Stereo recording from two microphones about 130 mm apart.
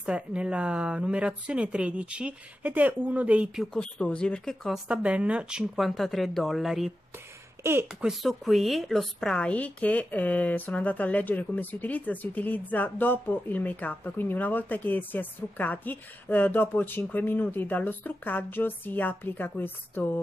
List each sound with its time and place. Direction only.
0.0 s speech: 10° right (ahead or behind)
3.7 s speech: 10° left (ahead or behind)
4.8 s speech: 10° right (ahead or behind)
7.9 s speech: 5° right (ahead or behind); by 20.2 s 15° left (ahead or behind)